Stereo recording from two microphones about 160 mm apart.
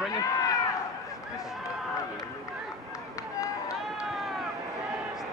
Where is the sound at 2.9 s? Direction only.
20° left (ahead or behind).